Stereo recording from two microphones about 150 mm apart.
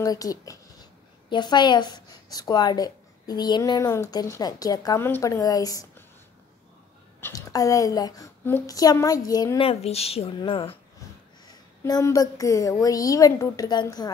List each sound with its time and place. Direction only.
0.0 s a woman's voice: 25° left (ahead or behind)
7.2 s a woman's voice: 20° left (ahead or behind)
9.6 s speech: 40° left (ahead or behind)
11.8 s a woman's voice: 20° left (ahead or behind)